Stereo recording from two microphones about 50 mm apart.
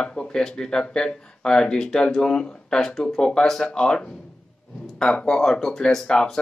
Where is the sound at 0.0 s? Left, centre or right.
Centre.